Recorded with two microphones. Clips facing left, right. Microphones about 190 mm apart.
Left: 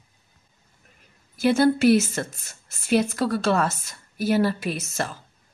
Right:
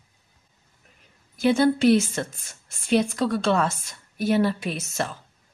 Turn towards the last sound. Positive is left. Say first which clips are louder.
# even
turn(degrees=0)  # may be behind; listen again after turning